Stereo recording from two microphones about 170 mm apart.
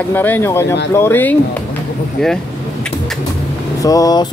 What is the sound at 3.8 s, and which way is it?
Speech, 20° left (ahead or behind).